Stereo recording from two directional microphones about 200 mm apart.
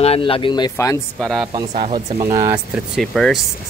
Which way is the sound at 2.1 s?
20° right (ahead or behind).